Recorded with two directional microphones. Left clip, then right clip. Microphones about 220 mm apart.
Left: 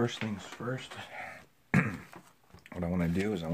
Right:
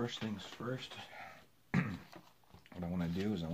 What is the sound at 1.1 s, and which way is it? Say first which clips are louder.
Beatboxing: left 8 dB; 45° left (ahead or behind).